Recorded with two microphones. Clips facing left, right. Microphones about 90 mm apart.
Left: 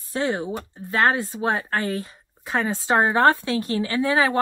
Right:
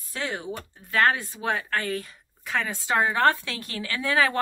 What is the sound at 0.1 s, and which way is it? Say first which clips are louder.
Speech: left 7 dB; 30° left (ahead or behind).